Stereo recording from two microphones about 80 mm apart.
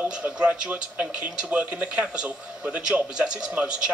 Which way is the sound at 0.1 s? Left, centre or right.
Centre.